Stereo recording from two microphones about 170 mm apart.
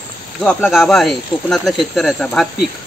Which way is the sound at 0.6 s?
Centre (ahead or behind).